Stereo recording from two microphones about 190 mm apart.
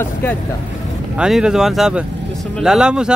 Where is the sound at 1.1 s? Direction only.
5° right (ahead or behind).